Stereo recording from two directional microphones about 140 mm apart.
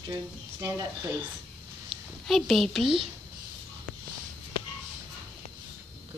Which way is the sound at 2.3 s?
Centre (ahead or behind).